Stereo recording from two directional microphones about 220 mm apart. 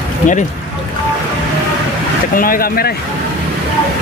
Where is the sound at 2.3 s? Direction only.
40° left (ahead or behind).